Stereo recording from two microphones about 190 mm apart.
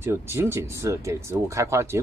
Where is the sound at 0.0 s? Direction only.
10° right (ahead or behind).